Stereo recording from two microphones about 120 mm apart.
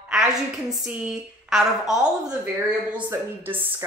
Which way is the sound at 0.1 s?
5° right (ahead or behind).